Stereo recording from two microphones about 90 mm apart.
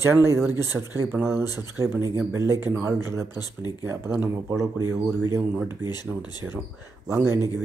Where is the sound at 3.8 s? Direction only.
25° right (ahead or behind).